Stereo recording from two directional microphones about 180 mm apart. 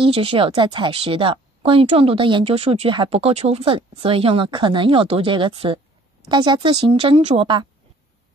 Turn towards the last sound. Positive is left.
turn(degrees=-25)  # may be behind; listen again after turning